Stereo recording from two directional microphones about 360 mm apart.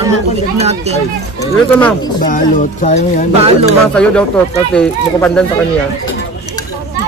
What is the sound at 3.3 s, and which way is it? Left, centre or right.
Speech, centre.